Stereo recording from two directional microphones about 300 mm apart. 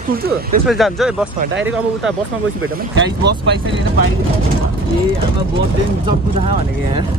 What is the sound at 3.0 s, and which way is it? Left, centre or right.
Speech, right.